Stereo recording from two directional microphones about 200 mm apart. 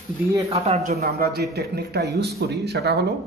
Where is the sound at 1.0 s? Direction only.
50° right (ahead or behind).